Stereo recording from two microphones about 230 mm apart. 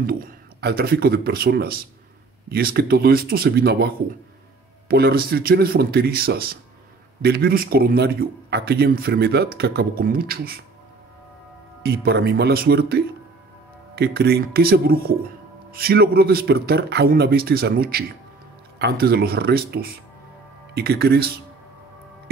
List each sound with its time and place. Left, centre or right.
0.0 s speech: right
11.8 s speech: right